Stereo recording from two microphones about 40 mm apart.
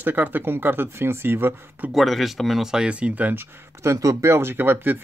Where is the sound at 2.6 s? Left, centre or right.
Centre.